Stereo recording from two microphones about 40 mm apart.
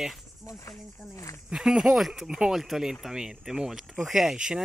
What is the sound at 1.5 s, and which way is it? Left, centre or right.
Speech, centre.